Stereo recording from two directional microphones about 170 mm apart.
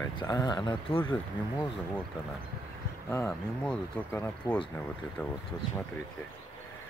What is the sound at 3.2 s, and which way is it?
Speech, 10° left (ahead or behind).